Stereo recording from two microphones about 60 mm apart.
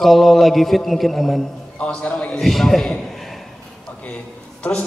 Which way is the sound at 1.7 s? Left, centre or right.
Left.